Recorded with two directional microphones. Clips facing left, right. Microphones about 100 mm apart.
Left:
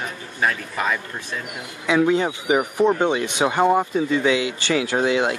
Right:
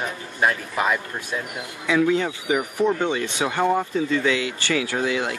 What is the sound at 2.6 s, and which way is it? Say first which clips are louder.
Speech: left 3 dB; 55° left (ahead or behind).